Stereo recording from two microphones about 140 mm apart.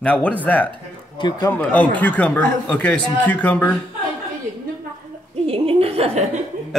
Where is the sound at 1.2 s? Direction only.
30° left (ahead or behind).